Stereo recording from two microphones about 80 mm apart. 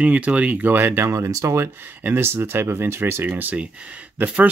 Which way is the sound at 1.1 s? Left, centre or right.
Right.